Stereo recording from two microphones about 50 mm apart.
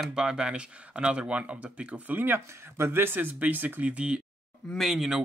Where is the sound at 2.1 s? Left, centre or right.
Right.